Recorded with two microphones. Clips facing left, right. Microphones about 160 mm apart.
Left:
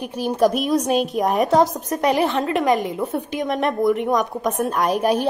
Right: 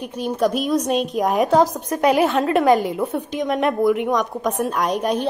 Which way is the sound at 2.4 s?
30° right (ahead or behind).